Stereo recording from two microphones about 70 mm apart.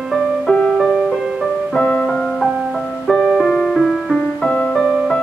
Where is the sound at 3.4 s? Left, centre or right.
Centre.